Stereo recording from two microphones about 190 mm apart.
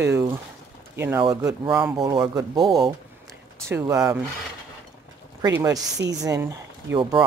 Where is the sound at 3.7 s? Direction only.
15° right (ahead or behind).